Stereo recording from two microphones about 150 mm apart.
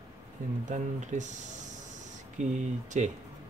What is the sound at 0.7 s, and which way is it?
Speech, 55° right (ahead or behind).